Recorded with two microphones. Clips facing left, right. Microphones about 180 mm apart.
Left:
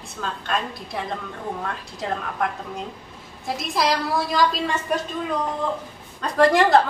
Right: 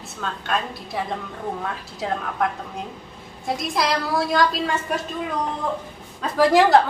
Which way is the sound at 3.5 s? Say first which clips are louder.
Even; centre (ahead or behind).